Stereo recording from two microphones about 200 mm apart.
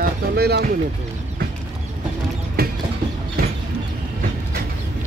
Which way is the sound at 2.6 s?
50° right (ahead or behind).